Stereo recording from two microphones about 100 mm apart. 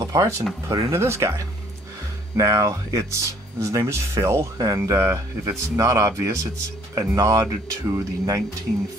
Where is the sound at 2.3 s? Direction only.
35° right (ahead or behind).